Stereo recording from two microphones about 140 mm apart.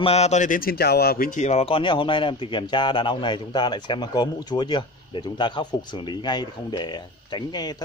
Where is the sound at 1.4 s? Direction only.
50° left (ahead or behind).